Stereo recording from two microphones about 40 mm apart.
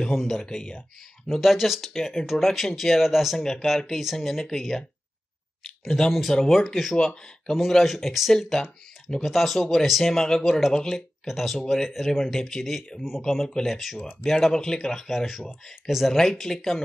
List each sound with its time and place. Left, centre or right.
0.0 s speech: centre
0.5 s speech: centre
1.3 s speech: centre
3.3 s speech: centre
11.6 s speech: centre